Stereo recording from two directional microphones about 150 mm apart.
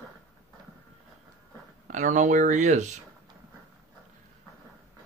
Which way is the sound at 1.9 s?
60° right (ahead or behind).